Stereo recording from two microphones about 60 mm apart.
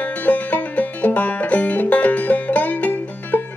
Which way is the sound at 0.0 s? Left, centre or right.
Left.